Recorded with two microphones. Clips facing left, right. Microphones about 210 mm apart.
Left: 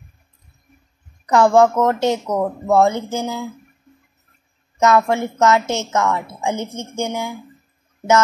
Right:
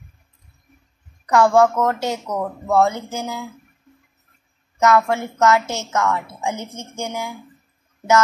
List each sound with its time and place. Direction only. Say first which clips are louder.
1.3 s a woman's voice: left 2 dB; 20° left (ahead or behind)
4.7 s a woman's voice: left 1 dB; 25° left (ahead or behind)